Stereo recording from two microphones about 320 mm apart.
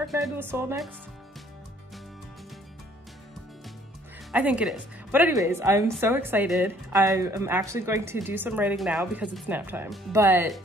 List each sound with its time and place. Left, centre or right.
0.1 s a woman's voice: centre
4.3 s a woman's voice: centre